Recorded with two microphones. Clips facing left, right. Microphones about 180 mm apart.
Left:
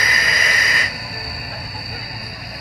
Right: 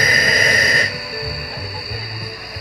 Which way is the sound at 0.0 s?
35° right (ahead or behind).